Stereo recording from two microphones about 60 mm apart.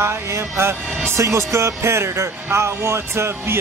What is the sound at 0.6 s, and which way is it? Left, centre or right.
Speech, right.